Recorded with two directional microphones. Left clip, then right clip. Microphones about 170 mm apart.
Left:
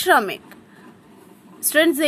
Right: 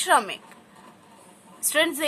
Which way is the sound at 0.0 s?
25° left (ahead or behind).